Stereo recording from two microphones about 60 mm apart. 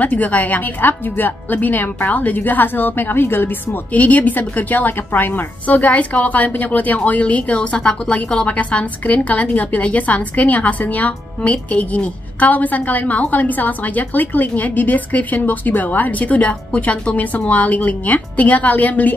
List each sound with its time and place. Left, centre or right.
0.0 s speech: left